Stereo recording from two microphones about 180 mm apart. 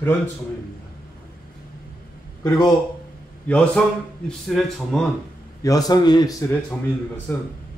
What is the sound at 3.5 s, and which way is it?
A man's voice, 5° left (ahead or behind).